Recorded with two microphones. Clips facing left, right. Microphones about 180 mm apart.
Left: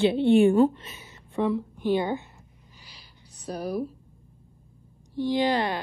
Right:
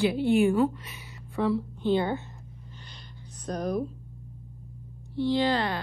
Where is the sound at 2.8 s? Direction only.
10° left (ahead or behind).